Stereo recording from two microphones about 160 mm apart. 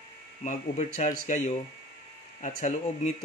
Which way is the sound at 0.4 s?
50° left (ahead or behind).